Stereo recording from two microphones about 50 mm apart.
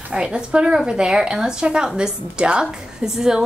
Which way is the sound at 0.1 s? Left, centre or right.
Centre.